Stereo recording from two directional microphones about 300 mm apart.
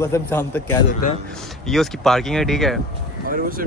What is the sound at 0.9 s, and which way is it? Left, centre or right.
Speech, left.